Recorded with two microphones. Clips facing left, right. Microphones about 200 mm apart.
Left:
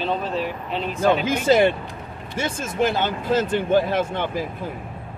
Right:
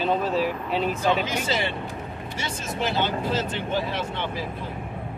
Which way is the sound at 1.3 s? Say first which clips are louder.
Left 10 dB; 50° left (ahead or behind).